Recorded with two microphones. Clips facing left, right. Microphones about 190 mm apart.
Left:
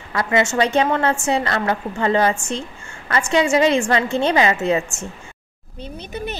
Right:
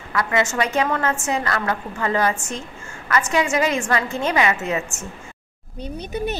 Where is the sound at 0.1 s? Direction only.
30° left (ahead or behind).